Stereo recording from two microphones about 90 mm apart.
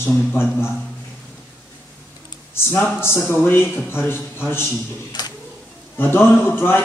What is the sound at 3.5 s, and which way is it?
A man's voice, 25° left (ahead or behind).